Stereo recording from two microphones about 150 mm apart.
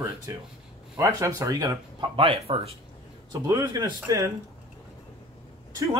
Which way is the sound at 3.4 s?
25° right (ahead or behind).